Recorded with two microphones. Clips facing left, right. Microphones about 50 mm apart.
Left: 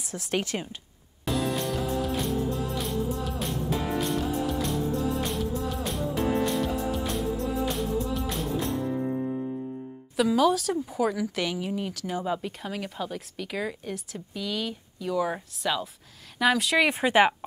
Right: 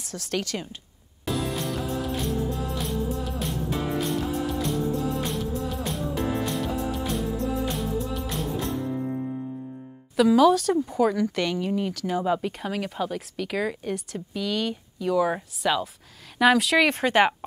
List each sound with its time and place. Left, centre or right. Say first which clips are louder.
0.1 s a woman's voice: even; centre
1.2 s music: left 1 dB; centre
10.1 s speech: right 5 dB; centre